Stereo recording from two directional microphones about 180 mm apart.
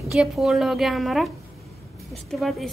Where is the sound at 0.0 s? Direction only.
Centre (ahead or behind).